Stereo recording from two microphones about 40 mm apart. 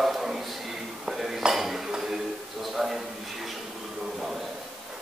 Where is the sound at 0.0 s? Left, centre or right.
Centre.